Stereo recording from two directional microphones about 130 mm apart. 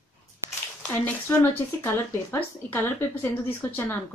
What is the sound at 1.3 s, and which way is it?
A woman's voice, 10° left (ahead or behind).